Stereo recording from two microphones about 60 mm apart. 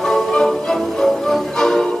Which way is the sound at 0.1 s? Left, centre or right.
Centre.